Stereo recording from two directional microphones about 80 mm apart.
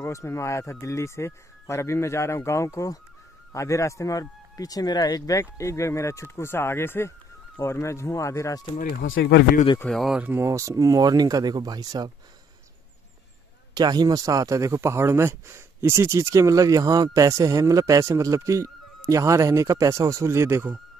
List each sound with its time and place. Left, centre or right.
0.0 s speech: left
9.8 s speech: centre
10.4 s speech: right
13.7 s speech: right